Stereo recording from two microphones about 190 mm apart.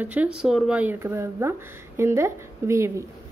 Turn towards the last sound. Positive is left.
turn(degrees=-15)  # may be behind; listen again after turning